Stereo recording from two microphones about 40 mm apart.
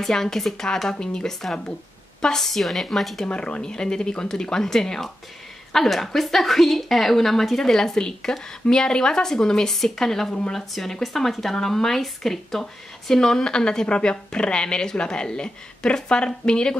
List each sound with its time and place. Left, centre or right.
0.0 s a woman's voice: centre
3.3 s a woman's voice: left